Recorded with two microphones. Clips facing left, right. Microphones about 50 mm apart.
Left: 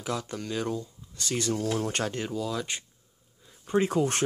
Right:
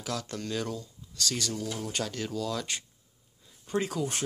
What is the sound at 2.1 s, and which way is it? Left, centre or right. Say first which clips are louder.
Speech: left 2 dB; centre.